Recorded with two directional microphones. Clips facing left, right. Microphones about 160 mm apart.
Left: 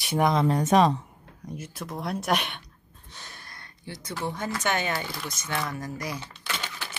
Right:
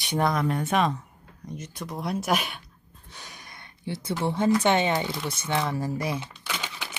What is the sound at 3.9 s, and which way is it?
Speech, 25° right (ahead or behind).